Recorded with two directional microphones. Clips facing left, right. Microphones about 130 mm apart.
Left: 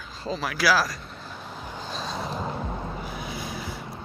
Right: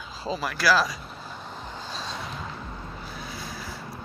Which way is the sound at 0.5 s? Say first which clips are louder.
Even; 5° left (ahead or behind).